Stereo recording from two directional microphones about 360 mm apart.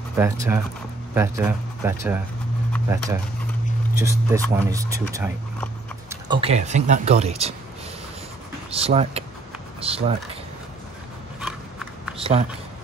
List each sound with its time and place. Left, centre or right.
0.1 s speech: centre
8.6 s speech: centre
12.2 s a sound: centre